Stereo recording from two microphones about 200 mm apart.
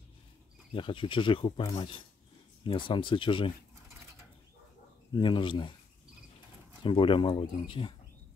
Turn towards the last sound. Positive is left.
turn(degrees=25)  # may be behind; listen again after turning